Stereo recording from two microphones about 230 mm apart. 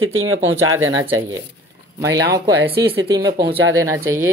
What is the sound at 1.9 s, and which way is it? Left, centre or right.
Speech, centre.